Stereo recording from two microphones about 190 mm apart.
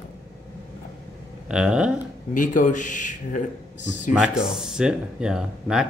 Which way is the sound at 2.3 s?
45° left (ahead or behind).